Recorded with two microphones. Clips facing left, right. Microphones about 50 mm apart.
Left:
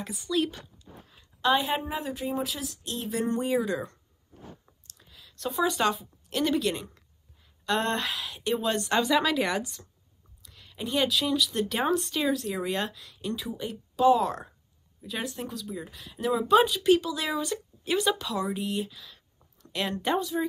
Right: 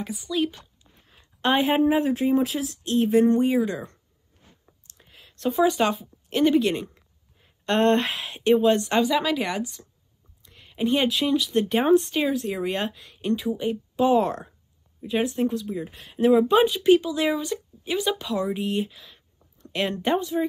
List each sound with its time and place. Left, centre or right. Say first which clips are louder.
0.0 s speech: right 2 dB; centre
1.0 s a sound: right 1 dB; right
1.9 s speech: right 11 dB; right
4.9 s speech: right 2 dB; right
7.6 s speech: right 7 dB; right
8.5 s speech: right 4 dB; right
9.0 s speech: right 2 dB; centre
9.4 s speech: even; right